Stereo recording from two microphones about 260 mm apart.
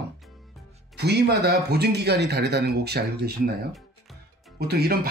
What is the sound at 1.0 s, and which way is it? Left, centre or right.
Speech, right.